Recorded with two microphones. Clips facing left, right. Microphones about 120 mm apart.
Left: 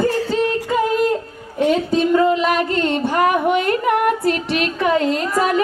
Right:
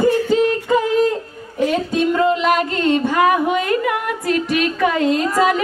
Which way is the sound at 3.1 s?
50° left (ahead or behind).